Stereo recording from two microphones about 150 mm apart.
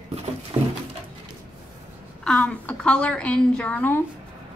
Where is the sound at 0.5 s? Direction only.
35° right (ahead or behind).